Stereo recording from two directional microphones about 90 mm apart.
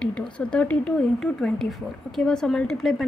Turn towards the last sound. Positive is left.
turn(degrees=5)  # may be behind; listen again after turning